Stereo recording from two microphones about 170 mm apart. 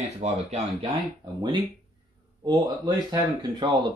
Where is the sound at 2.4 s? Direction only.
25° right (ahead or behind).